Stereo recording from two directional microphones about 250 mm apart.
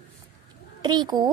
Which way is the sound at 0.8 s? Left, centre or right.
Centre.